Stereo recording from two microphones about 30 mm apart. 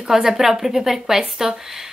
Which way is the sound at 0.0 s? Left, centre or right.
Centre.